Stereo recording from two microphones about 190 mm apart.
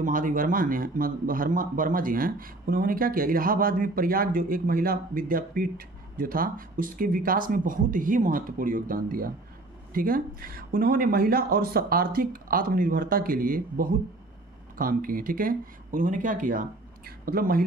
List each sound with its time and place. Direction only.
0.0 s speech: 45° right (ahead or behind)